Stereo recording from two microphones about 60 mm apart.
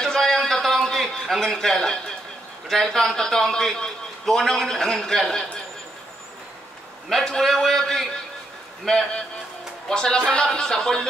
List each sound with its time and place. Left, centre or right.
0.0 s a sound: centre
2.7 s a man's voice: centre
7.1 s a man's voice: centre